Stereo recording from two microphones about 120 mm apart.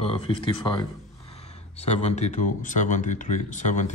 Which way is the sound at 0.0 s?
50° left (ahead or behind).